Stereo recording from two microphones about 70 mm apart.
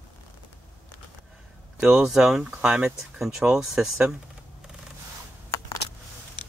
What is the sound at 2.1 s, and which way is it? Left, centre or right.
Speech, centre.